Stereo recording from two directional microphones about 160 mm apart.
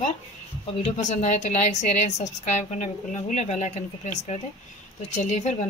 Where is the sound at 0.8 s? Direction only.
45° left (ahead or behind).